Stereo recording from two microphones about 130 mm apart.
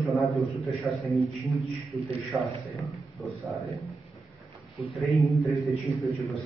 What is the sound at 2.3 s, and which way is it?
Speech, 15° right (ahead or behind).